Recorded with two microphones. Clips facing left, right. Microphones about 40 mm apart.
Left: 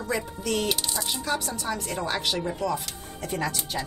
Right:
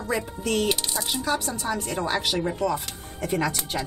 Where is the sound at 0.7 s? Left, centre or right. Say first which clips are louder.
Right 2 dB; right.